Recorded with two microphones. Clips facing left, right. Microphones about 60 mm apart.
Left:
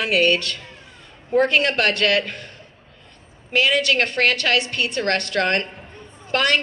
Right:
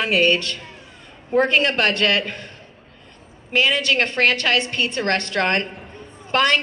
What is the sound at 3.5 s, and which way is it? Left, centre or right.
Speech, right.